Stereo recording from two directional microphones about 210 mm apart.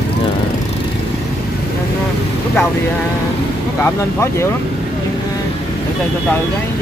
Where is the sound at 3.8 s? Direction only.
10° left (ahead or behind).